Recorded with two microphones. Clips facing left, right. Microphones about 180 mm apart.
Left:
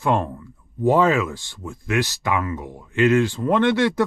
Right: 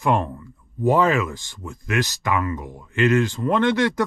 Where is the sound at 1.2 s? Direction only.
15° right (ahead or behind).